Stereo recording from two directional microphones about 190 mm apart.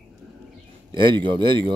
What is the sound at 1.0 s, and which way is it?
Speech, 25° right (ahead or behind).